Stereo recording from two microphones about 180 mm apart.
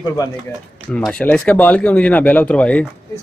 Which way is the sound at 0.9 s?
5° left (ahead or behind).